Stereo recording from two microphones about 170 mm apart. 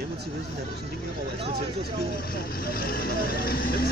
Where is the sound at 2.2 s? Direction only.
60° left (ahead or behind).